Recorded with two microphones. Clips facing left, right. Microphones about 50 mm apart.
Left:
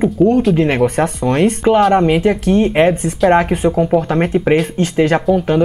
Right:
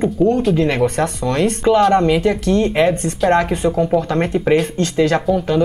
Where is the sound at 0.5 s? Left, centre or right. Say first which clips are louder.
Left 2 dB; left.